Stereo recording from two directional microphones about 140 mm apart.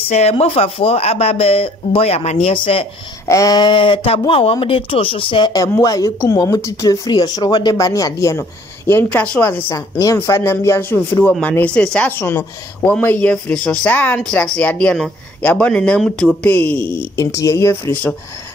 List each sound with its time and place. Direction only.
0.1 s speech: 50° left (ahead or behind)
3.3 s a woman's voice: 25° left (ahead or behind)